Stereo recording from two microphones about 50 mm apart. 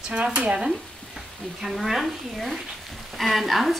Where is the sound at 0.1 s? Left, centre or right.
Right.